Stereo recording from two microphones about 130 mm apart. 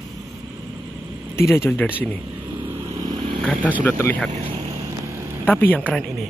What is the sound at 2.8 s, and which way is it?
Vehicle, 30° right (ahead or behind).